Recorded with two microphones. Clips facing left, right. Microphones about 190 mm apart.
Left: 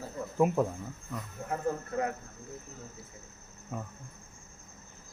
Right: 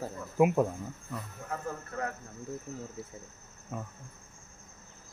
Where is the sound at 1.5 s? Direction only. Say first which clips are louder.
Left 5 dB; 20° left (ahead or behind).